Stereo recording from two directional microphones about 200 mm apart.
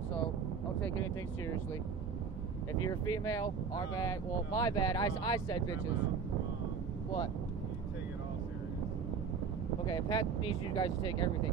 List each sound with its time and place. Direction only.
0.7 s vehicle: 70° left (ahead or behind)
2.9 s speech: 15° left (ahead or behind)
9.8 s speech: 20° left (ahead or behind)